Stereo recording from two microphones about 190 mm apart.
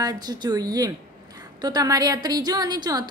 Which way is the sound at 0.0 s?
20° right (ahead or behind).